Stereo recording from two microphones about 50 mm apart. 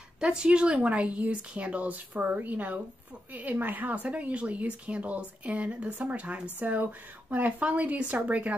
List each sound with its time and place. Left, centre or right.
0.2 s speech: centre